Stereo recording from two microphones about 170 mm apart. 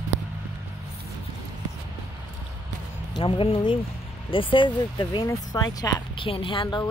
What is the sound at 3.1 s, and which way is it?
A woman's voice, 30° left (ahead or behind).